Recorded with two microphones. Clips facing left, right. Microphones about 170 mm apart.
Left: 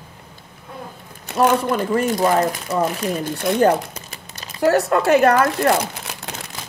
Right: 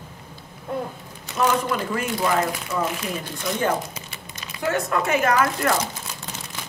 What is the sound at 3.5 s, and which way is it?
Crumpling, 40° left (ahead or behind).